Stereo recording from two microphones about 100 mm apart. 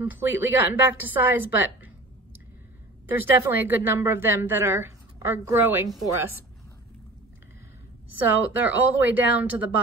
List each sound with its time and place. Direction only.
0.0 s a woman's voice: 20° right (ahead or behind)
3.1 s a woman's voice: 20° right (ahead or behind)
8.3 s speech: 15° right (ahead or behind)